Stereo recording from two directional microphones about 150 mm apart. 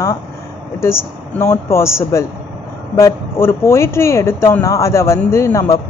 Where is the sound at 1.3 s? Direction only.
15° left (ahead or behind).